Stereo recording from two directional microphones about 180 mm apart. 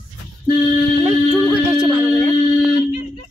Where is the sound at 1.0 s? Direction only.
5° right (ahead or behind).